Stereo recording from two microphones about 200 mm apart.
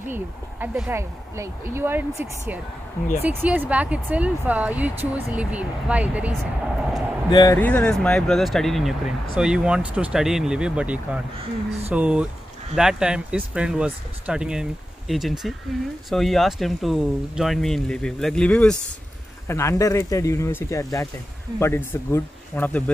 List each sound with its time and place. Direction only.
0.1 s speech: 10° right (ahead or behind)
7.2 s speech: 20° left (ahead or behind)
7.6 s speech: 5° left (ahead or behind)